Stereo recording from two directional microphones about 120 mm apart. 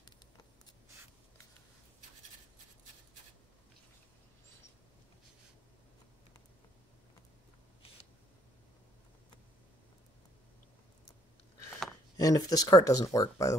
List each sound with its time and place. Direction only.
12.2 s speech: 30° left (ahead or behind)